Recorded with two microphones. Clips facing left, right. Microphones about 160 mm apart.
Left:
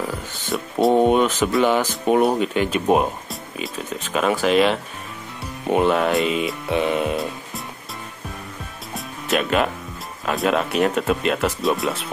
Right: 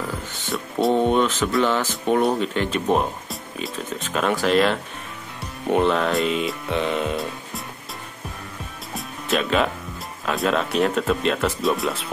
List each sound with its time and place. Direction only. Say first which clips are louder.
0.5 s a sound: left 3 dB; 15° left (ahead or behind)
0.9 s speech: left 3 dB; 15° left (ahead or behind)
8.9 s music: left 1 dB; centre (ahead or behind)
10.2 s speech: left 2 dB; centre (ahead or behind)